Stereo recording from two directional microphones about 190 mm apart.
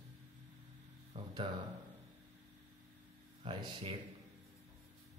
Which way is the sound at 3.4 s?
25° right (ahead or behind).